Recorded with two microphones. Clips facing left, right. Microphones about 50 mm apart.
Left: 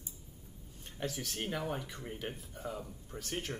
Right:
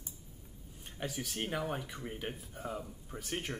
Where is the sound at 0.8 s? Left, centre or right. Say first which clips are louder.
Left 1 dB; centre.